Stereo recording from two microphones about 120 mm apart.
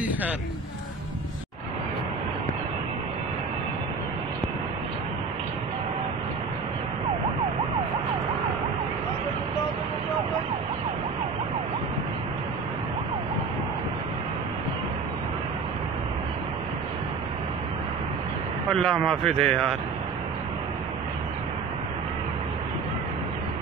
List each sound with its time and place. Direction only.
18.7 s speech: 5° left (ahead or behind)